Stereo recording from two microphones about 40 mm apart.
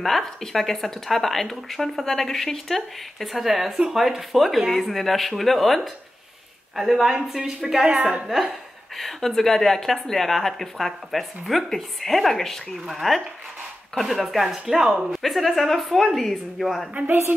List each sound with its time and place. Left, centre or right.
0.0 s speech: centre
6.8 s a woman's voice: centre
8.3 s speech: centre
8.9 s speech: centre
17.0 s a woman's voice: right